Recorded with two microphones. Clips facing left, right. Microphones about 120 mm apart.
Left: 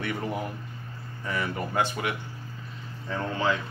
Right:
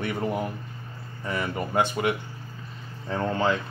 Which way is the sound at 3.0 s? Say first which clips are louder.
Right 3 dB; 35° right (ahead or behind).